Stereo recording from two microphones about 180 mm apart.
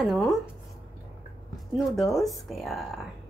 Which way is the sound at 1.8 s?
Centre (ahead or behind).